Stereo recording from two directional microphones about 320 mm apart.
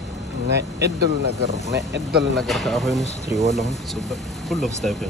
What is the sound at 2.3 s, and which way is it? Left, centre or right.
Speech, centre.